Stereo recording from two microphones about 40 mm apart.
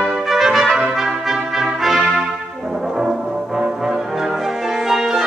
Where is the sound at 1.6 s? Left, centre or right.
Centre.